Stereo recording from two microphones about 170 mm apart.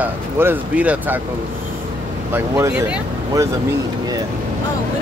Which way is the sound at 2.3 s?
15° right (ahead or behind).